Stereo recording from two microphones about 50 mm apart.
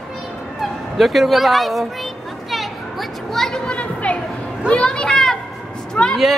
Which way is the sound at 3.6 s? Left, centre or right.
Left.